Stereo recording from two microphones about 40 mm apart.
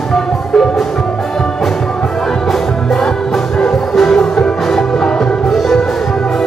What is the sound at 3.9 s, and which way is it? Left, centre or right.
Music, centre.